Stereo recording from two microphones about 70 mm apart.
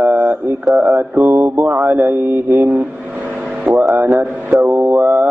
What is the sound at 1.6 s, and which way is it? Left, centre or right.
Speech, right.